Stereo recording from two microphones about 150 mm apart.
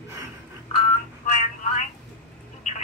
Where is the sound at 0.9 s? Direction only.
50° left (ahead or behind).